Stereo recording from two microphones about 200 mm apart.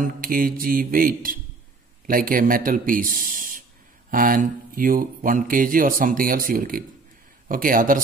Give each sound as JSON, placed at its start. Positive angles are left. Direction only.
{"t": 0.0, "sound": "speech", "side_deg": -45}